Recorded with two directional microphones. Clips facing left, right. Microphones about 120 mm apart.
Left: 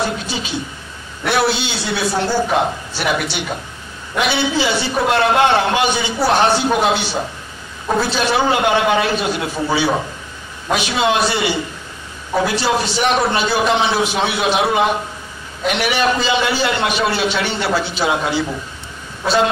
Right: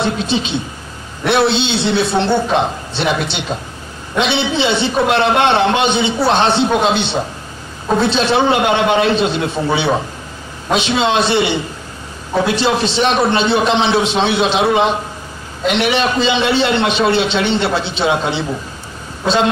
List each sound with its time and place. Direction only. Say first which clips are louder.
0.0 s a man's voice: right 4 dB; 25° right (ahead or behind)